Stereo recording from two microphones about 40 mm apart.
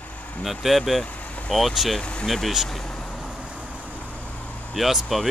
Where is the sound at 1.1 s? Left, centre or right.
Left.